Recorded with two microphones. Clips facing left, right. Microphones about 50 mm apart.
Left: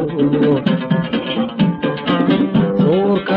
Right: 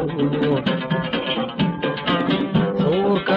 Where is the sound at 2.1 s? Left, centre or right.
Centre.